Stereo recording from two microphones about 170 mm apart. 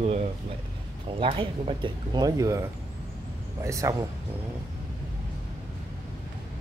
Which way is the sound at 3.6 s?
20° right (ahead or behind).